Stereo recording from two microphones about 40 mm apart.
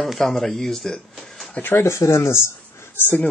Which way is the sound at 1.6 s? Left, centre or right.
Left.